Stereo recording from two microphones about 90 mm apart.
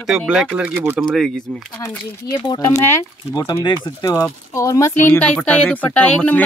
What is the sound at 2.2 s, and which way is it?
Speech, 55° left (ahead or behind).